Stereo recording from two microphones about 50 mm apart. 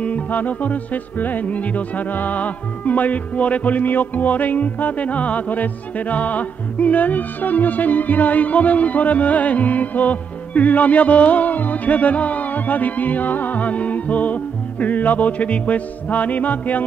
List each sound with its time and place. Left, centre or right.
0.0 s music: left